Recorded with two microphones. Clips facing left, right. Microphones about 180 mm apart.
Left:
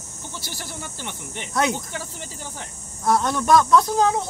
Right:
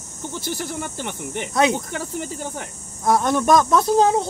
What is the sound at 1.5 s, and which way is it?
Speech, 20° right (ahead or behind).